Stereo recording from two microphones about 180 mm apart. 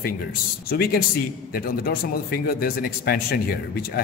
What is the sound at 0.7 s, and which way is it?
A man's voice, 55° left (ahead or behind).